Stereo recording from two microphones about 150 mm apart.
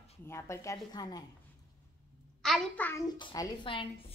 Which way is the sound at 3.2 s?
30° left (ahead or behind).